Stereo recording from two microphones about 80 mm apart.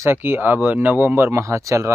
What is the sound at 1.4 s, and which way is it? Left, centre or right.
Speech, right.